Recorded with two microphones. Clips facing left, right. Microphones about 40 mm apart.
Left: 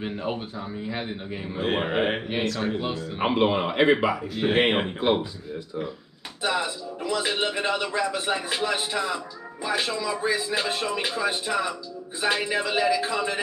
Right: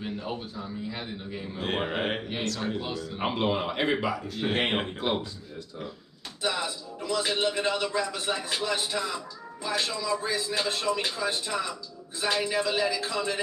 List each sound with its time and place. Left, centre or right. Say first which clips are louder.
0.0 s a man's voice: left 4 dB; left
1.6 s a man's voice: left 5 dB; centre
6.4 s speech: left 4 dB; centre